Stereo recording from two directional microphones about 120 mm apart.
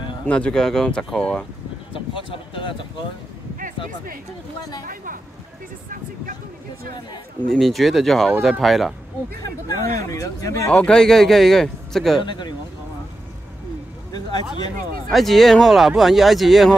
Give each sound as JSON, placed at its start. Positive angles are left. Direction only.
{"t": 0.3, "sound": "speech", "side_deg": 10}
{"t": 2.0, "sound": "speech", "side_deg": 45}
{"t": 7.5, "sound": "speech", "side_deg": 0}
{"t": 9.7, "sound": "speech", "side_deg": 30}
{"t": 10.7, "sound": "speech", "side_deg": 10}
{"t": 12.2, "sound": "speech", "side_deg": 40}
{"t": 15.0, "sound": "speech", "side_deg": 0}